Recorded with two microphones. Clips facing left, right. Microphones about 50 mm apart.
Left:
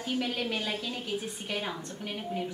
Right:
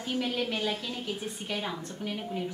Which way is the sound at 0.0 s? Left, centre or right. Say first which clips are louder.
Right 1 dB; centre.